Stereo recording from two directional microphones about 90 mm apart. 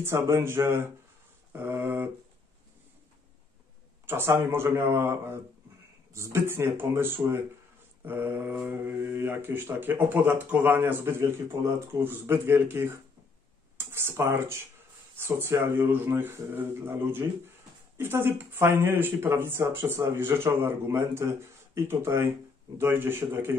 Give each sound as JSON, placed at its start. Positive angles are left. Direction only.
{"t": 0.0, "sound": "speech", "side_deg": -30}
{"t": 4.1, "sound": "speech", "side_deg": -25}